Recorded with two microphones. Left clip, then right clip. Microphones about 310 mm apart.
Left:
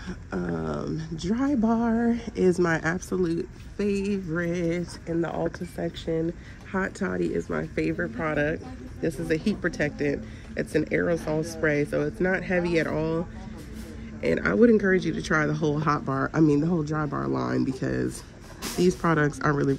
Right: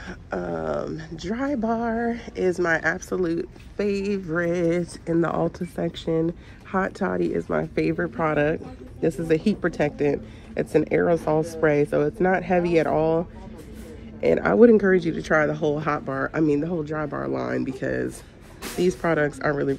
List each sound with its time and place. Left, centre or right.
0.4 s speech: centre
1.9 s speech: centre
2.3 s speech: left; by 4.8 s centre
5.0 s a woman's voice: right
7.2 s a man's voice: centre
11.1 s speech: right
11.6 s a man's voice: centre
14.2 s a man's voice: centre